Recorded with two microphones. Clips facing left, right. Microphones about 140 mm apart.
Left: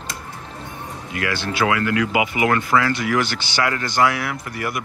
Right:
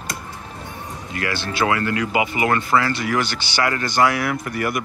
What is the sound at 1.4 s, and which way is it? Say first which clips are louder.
Speech: even; 10° left (ahead or behind).